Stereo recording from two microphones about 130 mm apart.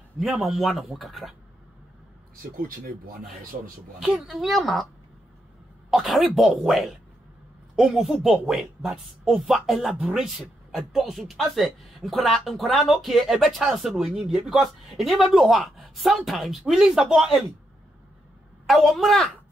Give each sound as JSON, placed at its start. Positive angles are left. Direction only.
{"t": 0.2, "sound": "speech", "side_deg": 0}
{"t": 2.4, "sound": "speech", "side_deg": -90}
{"t": 4.0, "sound": "speech", "side_deg": 0}
{"t": 5.9, "sound": "speech", "side_deg": 0}
{"t": 18.7, "sound": "speech", "side_deg": 0}